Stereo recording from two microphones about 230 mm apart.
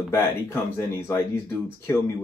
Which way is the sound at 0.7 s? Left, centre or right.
Centre.